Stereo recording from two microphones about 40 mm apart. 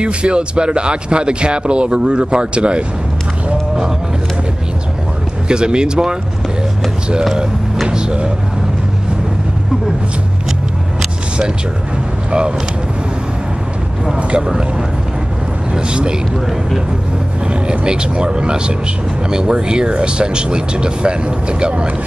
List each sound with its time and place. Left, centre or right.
0.0 s speech: right
3.4 s a sound: right
5.5 s speech: right
7.9 s a sound: right
12.3 s speech: right
14.3 s speech: centre
15.7 s speech: right
17.5 s speech: right